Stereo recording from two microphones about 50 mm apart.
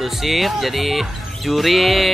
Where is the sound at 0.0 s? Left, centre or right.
Centre.